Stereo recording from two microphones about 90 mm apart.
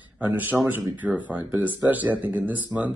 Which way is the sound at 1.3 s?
20° right (ahead or behind).